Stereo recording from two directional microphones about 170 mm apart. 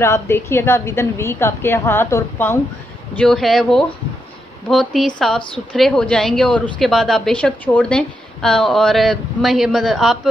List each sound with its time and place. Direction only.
0.0 s a woman's voice: 15° left (ahead or behind)
3.2 s a woman's voice: centre (ahead or behind)